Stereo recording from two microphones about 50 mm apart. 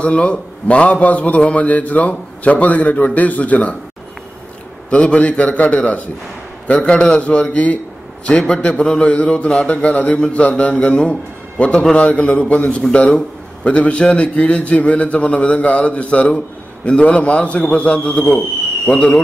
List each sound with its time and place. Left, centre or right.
0.0 s a man's voice: left
4.8 s a man's voice: left
8.3 s a man's voice: centre